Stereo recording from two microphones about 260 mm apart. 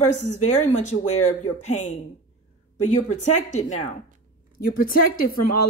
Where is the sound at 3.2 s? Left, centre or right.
Left.